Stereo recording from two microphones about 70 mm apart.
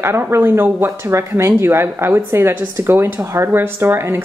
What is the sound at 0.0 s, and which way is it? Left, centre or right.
Speech, right.